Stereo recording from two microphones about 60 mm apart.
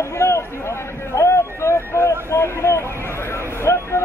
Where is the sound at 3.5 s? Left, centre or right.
Left.